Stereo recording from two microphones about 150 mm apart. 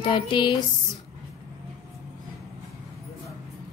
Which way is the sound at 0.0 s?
35° left (ahead or behind).